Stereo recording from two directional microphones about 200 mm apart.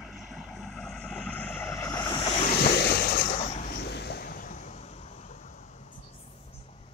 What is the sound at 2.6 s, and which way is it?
Vehicle, 55° left (ahead or behind).